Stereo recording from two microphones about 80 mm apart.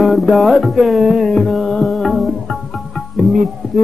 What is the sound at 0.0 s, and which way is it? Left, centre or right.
Music, centre.